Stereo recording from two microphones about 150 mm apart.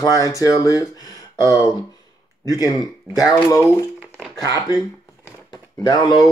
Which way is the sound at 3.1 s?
5° right (ahead or behind).